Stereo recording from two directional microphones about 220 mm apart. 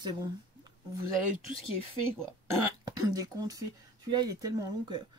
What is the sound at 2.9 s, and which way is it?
Speech, 15° right (ahead or behind).